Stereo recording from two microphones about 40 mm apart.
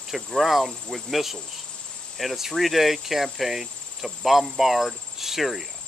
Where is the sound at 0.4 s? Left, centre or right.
Centre.